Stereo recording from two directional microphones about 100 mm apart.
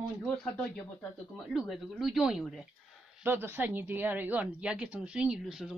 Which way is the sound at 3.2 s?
20° right (ahead or behind).